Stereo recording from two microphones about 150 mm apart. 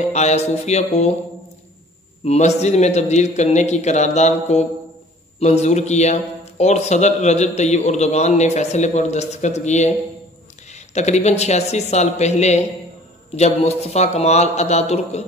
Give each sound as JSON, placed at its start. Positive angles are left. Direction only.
{"t": 0.1, "sound": "a man's voice", "side_deg": 50}
{"t": 2.2, "sound": "a man's voice", "side_deg": 50}